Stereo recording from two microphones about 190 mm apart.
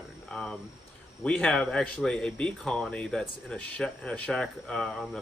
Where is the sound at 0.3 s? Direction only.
5° left (ahead or behind).